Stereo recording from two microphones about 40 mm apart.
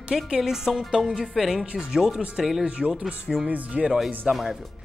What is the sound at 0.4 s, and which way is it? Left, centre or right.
A woman's voice, centre.